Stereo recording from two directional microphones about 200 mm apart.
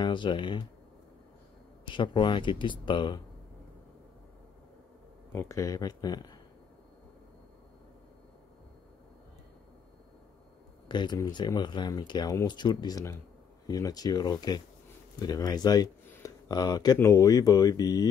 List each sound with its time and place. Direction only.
0.0 s speech: 25° left (ahead or behind)
1.9 s speech: 25° left (ahead or behind)
5.3 s speech: 15° left (ahead or behind)
10.9 s speech: 20° left (ahead or behind)